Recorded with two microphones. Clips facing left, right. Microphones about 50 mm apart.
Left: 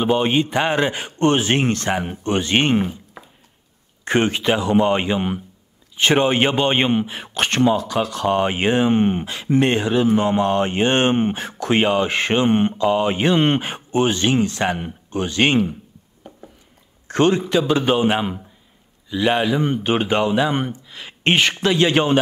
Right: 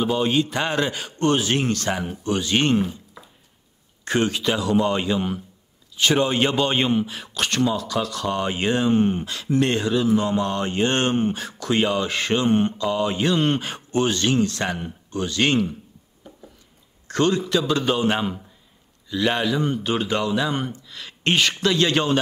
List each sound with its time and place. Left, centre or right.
0.0 s speech: left
2.8 s a sound: left
4.0 s speech: left
17.1 s speech: left